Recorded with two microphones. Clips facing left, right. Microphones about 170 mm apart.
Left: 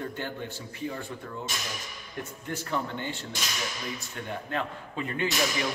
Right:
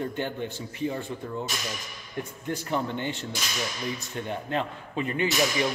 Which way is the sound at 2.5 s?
15° right (ahead or behind).